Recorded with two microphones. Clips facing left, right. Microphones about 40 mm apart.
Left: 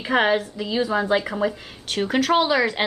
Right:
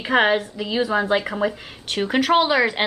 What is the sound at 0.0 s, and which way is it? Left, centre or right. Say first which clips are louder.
A woman's voice: right 2 dB; centre.